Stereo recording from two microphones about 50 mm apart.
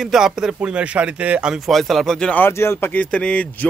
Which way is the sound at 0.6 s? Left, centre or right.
Right.